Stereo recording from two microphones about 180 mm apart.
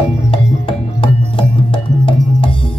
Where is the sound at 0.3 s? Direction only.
30° left (ahead or behind).